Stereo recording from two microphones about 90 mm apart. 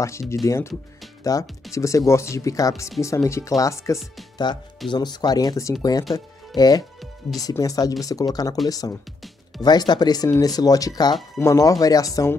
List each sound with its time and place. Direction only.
0.0 s speech: 30° left (ahead or behind)
4.8 s speech: 50° left (ahead or behind)